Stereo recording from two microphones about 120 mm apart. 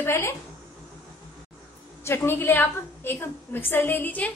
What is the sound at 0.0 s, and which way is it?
Speech, 20° left (ahead or behind).